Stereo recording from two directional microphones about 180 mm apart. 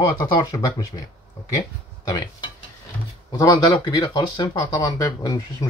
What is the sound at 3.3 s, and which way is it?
Speech, 20° left (ahead or behind).